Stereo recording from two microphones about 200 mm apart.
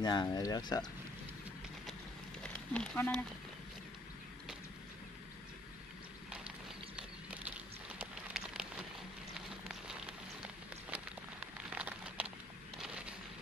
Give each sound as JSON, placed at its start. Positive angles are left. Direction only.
{"t": 0.0, "sound": "speech", "side_deg": 20}
{"t": 2.4, "sound": "speech", "side_deg": 5}
{"t": 7.5, "sound": "a sound", "side_deg": -5}